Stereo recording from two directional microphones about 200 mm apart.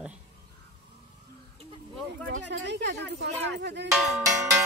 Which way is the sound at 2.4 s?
60° right (ahead or behind).